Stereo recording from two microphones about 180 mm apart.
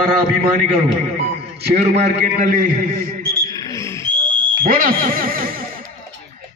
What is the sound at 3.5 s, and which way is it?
Wild animals, 20° left (ahead or behind).